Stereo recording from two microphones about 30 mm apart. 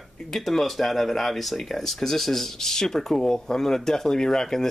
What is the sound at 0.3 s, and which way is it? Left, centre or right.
Speech, centre.